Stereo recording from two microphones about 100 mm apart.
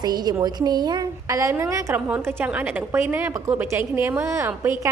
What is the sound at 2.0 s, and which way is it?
A woman's voice, 15° right (ahead or behind).